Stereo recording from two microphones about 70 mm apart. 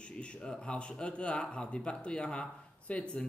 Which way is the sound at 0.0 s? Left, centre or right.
Centre.